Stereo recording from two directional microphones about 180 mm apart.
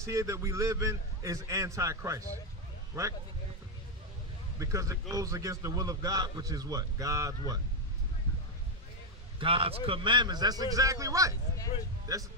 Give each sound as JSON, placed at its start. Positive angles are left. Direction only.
{"t": 0.0, "sound": "a man's voice", "side_deg": -15}
{"t": 4.6, "sound": "a man's voice", "side_deg": -15}
{"t": 9.4, "sound": "a man's voice", "side_deg": -30}